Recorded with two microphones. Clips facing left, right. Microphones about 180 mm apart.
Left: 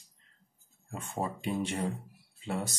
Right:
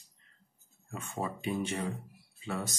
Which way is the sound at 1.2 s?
30° left (ahead or behind).